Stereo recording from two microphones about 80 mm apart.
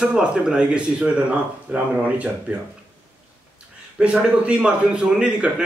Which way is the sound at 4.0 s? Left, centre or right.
Centre.